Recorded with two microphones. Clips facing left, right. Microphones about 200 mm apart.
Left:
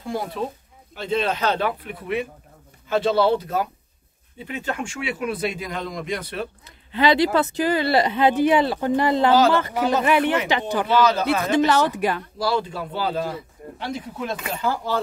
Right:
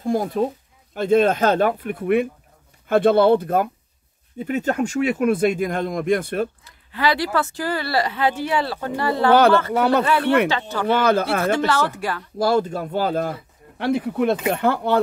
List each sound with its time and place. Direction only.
0.0 s a man's voice: 45° right (ahead or behind)
6.6 s speech: 20° left (ahead or behind)
9.3 s speech: 60° right (ahead or behind)
10.0 s speech: 15° left (ahead or behind)
10.9 s speech: 55° right (ahead or behind)
11.5 s speech: 15° left (ahead or behind)
12.4 s a man's voice: 50° right (ahead or behind)
13.7 s speech: 60° right (ahead or behind)